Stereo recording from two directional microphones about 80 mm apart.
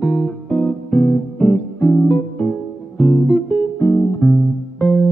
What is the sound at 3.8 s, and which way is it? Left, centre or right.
Music, left.